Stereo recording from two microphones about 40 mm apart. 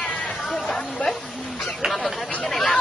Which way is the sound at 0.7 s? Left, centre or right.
Centre.